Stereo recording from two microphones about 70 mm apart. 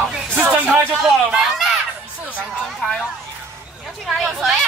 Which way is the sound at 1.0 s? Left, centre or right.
Centre.